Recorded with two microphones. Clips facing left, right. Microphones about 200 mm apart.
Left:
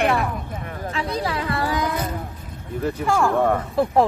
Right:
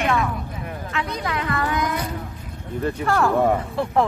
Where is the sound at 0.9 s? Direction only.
30° left (ahead or behind).